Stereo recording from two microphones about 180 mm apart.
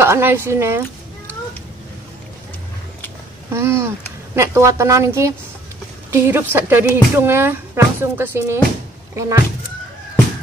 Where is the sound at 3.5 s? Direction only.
15° right (ahead or behind).